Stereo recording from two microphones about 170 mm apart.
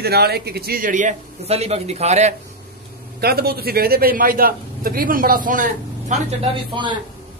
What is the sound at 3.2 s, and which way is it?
Speech, 65° right (ahead or behind).